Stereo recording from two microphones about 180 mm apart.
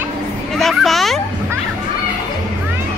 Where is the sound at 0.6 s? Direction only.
Centre (ahead or behind).